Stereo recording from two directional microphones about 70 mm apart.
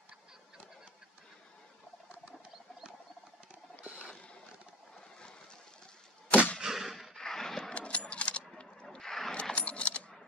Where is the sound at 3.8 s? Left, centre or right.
Right.